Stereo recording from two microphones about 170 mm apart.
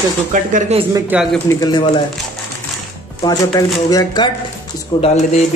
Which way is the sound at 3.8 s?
25° left (ahead or behind).